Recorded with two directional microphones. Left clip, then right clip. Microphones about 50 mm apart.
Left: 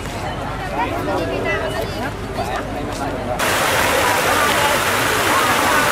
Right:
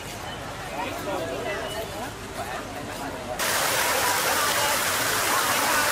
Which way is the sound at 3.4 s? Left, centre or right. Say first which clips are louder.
Left 7 dB; centre.